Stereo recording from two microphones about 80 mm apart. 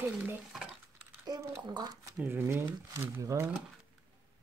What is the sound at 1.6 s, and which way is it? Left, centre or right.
Speech, right.